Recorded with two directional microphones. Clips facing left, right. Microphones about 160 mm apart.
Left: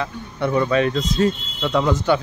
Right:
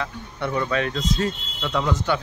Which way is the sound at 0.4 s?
25° left (ahead or behind).